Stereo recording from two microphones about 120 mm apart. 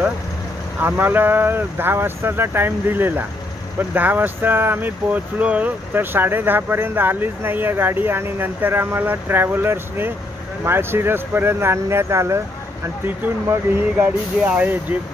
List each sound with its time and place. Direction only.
0.7 s speech: 15° right (ahead or behind)